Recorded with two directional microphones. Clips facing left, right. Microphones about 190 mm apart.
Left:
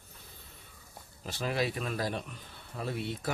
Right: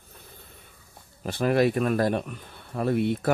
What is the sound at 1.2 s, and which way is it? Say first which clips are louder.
Speech: right 10 dB; 55° right (ahead or behind).